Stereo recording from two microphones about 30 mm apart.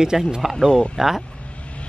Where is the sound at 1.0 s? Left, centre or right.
Centre.